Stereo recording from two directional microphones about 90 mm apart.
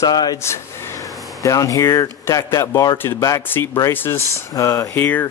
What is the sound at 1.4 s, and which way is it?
Speech, 40° left (ahead or behind).